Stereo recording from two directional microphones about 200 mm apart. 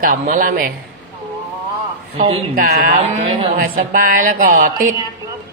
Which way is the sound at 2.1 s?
30° right (ahead or behind).